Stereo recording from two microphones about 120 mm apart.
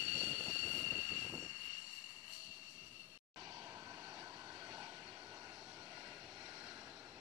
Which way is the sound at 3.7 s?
30° right (ahead or behind).